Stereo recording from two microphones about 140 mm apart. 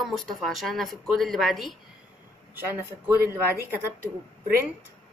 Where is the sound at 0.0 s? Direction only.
Centre (ahead or behind).